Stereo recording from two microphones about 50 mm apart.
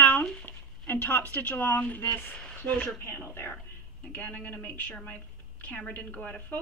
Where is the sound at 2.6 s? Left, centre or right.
Left.